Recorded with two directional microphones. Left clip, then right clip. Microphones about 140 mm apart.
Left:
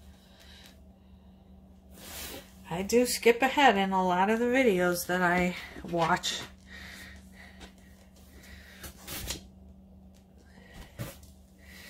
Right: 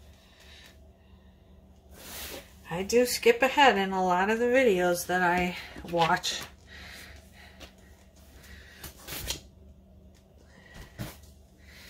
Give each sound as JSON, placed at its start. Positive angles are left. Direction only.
{"t": 2.7, "sound": "speech", "side_deg": 40}